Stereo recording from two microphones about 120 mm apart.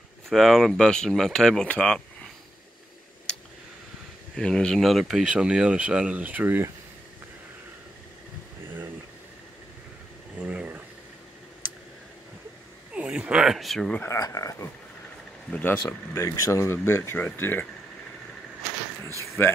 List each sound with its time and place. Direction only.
0.3 s speech: centre (ahead or behind)
4.4 s speech: 5° left (ahead or behind); by 6.7 s 15° right (ahead or behind)
10.4 s a sound: 10° right (ahead or behind)
12.9 s a sound: 10° right (ahead or behind); by 14.0 s 5° left (ahead or behind)
14.0 s speech: 30° left (ahead or behind)
15.5 s speech: 15° left (ahead or behind)
19.4 s speech: 20° left (ahead or behind)